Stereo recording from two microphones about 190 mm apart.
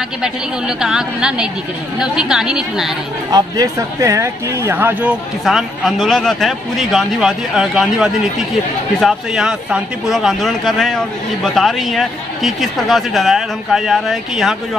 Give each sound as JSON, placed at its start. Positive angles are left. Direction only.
{"t": 0.2, "sound": "speech", "side_deg": -5}
{"t": 3.3, "sound": "speech", "side_deg": -20}
{"t": 5.4, "sound": "speech", "side_deg": 0}